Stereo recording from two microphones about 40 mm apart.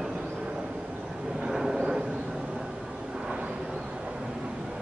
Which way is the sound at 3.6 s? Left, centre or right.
Centre.